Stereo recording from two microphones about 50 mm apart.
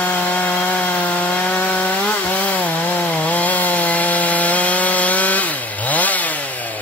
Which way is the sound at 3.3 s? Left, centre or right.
Left.